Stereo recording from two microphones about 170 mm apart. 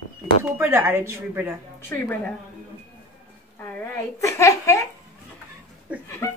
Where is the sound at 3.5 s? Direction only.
10° left (ahead or behind).